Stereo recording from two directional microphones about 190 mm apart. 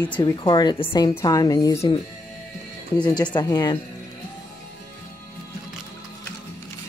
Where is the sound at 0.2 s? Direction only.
25° left (ahead or behind).